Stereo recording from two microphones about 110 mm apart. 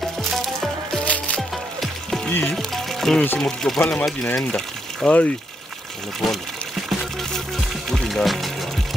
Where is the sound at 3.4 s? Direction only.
5° left (ahead or behind).